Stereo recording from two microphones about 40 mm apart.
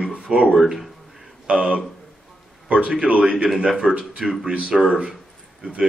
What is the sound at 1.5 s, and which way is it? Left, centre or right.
Speech, right.